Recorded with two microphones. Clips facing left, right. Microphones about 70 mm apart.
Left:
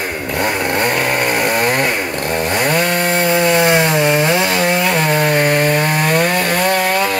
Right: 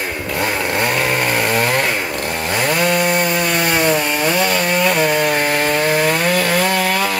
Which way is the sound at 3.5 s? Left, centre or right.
Left.